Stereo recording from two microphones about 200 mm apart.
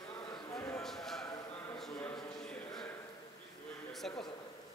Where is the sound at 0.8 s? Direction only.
Centre (ahead or behind).